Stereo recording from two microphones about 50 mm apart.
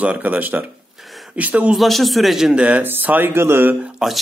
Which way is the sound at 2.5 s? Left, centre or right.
Right.